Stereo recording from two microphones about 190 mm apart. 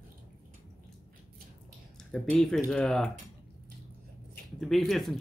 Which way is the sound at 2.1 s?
Centre (ahead or behind).